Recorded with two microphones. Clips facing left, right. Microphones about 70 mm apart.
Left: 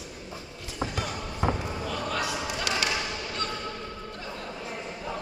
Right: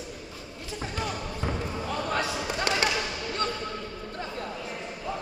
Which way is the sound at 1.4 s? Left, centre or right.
Left.